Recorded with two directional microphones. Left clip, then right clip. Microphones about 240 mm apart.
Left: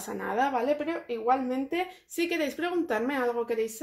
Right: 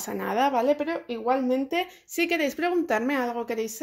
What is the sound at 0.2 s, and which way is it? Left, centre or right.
A woman's voice, right.